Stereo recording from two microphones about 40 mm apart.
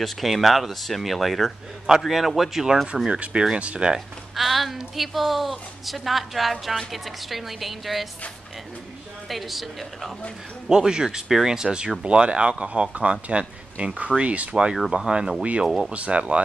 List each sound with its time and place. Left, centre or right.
0.0 s a woman's voice: centre
1.9 s speech: centre
3.1 s speech: right
4.4 s a sound: centre
4.9 s a woman's voice: centre
9.3 s a woman's voice: centre
10.7 s speech: centre; by 14.5 s right
14.5 s speech: right
15.6 s speech: centre
15.9 s speech: right